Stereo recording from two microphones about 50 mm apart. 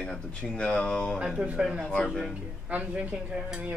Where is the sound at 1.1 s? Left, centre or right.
Centre.